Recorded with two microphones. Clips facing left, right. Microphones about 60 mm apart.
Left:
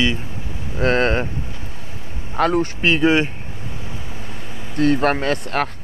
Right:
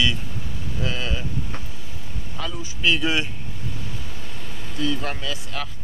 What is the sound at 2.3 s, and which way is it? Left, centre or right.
Speech, left.